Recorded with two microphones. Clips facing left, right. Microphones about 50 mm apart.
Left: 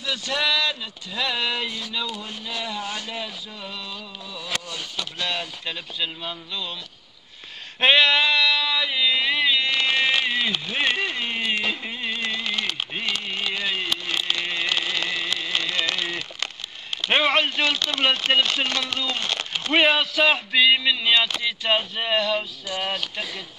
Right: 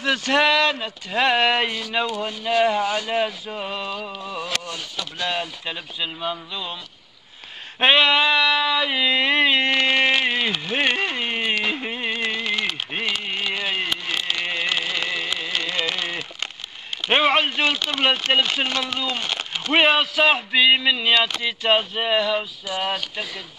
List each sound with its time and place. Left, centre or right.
0.0 s speech: right
2.4 s a sound: right
5.2 s speech: centre
7.8 s speech: centre; by 9.8 s right
9.8 s a sound: right
14.6 s carnatic music: centre
17.2 s speech: right